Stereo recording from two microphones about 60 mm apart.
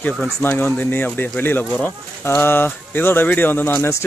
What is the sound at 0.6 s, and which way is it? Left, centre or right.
Speech, left.